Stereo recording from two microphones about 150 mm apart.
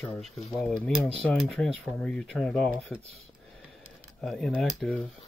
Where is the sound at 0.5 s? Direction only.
Centre (ahead or behind).